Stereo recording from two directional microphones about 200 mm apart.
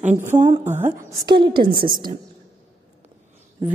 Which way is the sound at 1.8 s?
45° right (ahead or behind).